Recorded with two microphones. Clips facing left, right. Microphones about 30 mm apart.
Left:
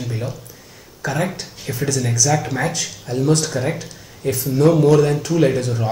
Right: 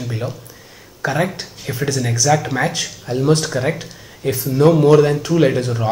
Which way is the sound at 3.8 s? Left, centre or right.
Centre.